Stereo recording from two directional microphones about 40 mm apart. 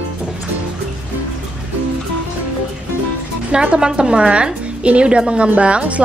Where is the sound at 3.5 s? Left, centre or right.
Right.